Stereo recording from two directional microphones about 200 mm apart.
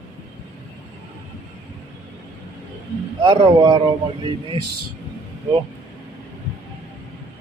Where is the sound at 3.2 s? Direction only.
25° right (ahead or behind).